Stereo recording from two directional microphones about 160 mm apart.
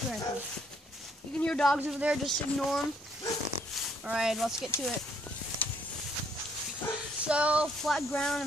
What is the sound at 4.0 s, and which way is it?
Speech, 5° right (ahead or behind).